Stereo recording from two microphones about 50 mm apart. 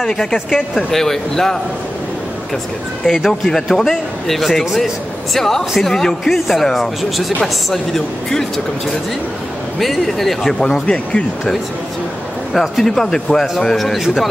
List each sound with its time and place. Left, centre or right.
0.0 s speech: centre
3.1 s a man's voice: centre
9.8 s speech: centre
12.5 s speech: centre
13.9 s a man's voice: centre